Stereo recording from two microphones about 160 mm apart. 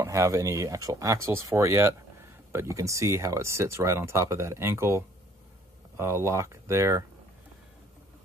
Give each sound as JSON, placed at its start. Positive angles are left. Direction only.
{"t": 0.0, "sound": "speech", "side_deg": -20}